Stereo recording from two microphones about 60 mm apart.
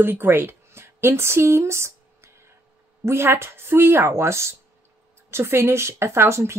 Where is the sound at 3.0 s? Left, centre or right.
Right.